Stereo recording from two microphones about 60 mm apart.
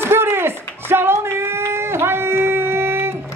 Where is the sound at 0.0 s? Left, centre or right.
Right.